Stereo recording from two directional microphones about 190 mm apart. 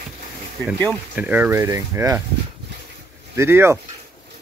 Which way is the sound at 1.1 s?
10° right (ahead or behind).